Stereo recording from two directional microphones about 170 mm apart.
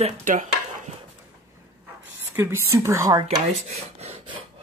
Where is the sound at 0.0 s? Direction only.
45° right (ahead or behind).